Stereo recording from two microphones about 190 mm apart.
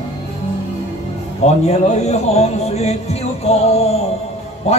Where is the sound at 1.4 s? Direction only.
35° left (ahead or behind).